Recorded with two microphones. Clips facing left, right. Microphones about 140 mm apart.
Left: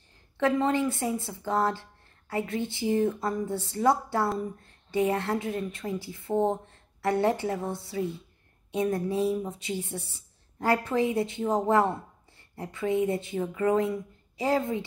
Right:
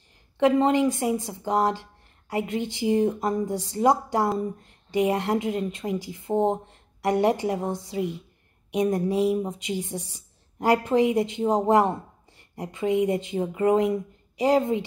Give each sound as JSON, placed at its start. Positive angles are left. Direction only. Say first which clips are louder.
{"t": 0.4, "sound": "a woman's voice", "louder": "right 5 dB", "side_deg": -20}